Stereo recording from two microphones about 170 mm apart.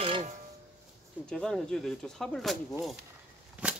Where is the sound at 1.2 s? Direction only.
5° left (ahead or behind).